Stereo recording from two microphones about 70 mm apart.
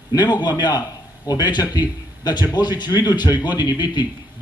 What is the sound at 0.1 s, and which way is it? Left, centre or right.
A man's voice, left.